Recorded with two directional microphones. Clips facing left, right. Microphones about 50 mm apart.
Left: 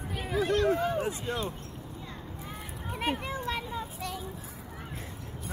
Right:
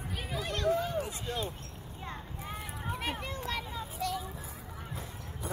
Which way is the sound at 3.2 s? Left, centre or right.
Centre.